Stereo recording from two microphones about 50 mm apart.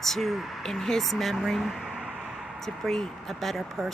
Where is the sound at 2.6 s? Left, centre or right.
Centre.